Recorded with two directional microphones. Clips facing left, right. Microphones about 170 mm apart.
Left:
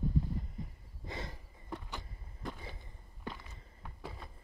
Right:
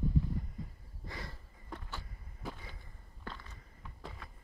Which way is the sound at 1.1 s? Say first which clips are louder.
Left 3 dB; 20° left (ahead or behind).